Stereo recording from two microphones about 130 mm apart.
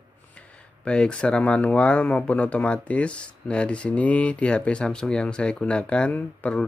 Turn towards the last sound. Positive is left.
turn(degrees=10)  # may be behind; listen again after turning